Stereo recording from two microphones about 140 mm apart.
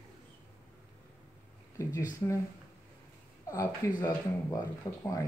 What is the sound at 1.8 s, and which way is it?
Speech, 25° left (ahead or behind).